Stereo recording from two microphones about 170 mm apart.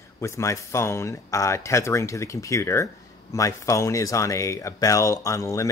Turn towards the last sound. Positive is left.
turn(degrees=20)  # may be behind; listen again after turning